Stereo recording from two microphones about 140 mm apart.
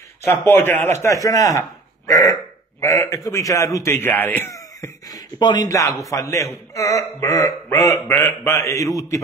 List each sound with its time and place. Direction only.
0.2 s speech: 20° left (ahead or behind)
2.8 s speech: 25° left (ahead or behind)